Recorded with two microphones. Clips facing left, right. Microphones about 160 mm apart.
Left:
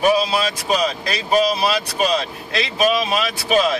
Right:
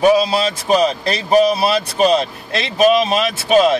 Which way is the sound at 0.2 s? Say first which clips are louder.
Right 3 dB; 35° right (ahead or behind).